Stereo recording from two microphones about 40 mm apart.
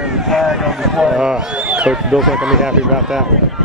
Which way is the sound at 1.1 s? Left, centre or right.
Right.